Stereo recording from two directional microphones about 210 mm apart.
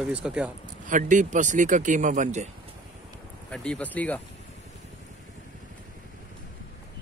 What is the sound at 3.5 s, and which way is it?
Speech, 5° left (ahead or behind).